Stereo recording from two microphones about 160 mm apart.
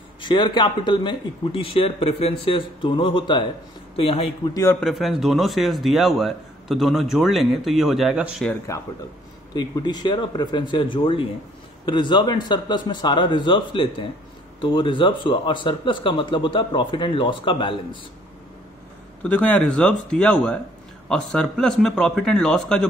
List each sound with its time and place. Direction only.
0.2 s speech: 30° left (ahead or behind)
4.7 s a man's voice: centre (ahead or behind)
9.5 s speech: 25° left (ahead or behind)
19.2 s a man's voice: 10° left (ahead or behind)